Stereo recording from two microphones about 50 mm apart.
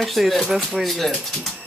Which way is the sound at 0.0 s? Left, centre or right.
Centre.